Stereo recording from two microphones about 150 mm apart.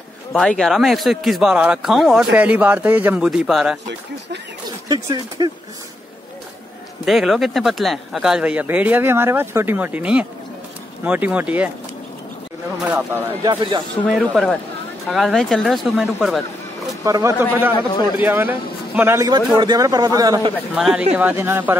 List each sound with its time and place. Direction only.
0.3 s speech: 5° left (ahead or behind); by 3.3 s 10° right (ahead or behind)
3.3 s speech: centre (ahead or behind)
4.6 s speech: 30° right (ahead or behind)
7.1 s speech: centre (ahead or behind)
12.8 s speech: 10° right (ahead or behind)
13.4 s a man's voice: 30° right (ahead or behind)
14.0 s speech: centre (ahead or behind)
17.0 s a man's voice: 20° right (ahead or behind)
17.7 s a man's voice: 30° left (ahead or behind)
18.2 s a man's voice: 10° right (ahead or behind)
20.7 s speech: 5° right (ahead or behind)